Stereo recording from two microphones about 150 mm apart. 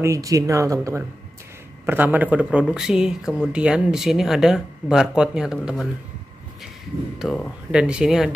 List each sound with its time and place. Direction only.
0.0 s speech: 20° right (ahead or behind); by 5.9 s 5° right (ahead or behind)
7.7 s speech: 5° right (ahead or behind)